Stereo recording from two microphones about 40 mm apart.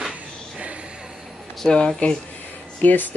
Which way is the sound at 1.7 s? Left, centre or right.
Left.